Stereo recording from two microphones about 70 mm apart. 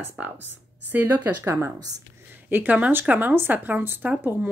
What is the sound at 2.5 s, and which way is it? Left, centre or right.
Speech, right.